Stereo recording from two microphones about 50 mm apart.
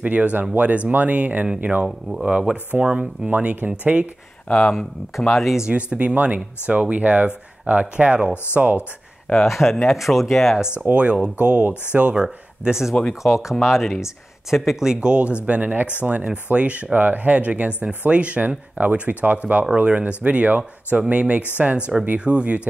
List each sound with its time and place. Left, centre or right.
0.0 s speech: right
4.5 s speech: centre
5.3 s speech: centre
5.7 s speech: right
9.4 s speech: centre
10.9 s speech: right
12.2 s speech: centre